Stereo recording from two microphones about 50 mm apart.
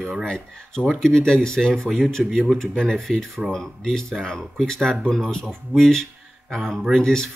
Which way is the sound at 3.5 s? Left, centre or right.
Centre.